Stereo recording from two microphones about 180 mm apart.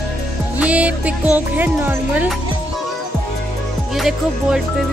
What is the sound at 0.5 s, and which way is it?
Speech, 5° right (ahead or behind).